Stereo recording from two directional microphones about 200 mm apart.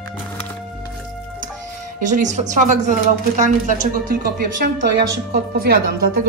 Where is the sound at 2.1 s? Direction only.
35° right (ahead or behind).